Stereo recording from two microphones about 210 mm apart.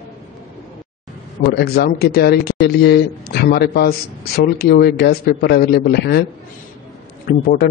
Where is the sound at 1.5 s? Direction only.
50° left (ahead or behind).